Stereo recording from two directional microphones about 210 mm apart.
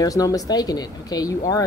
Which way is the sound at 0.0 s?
15° left (ahead or behind).